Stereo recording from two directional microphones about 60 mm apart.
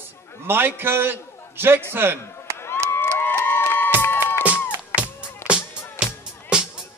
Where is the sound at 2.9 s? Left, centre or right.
Left.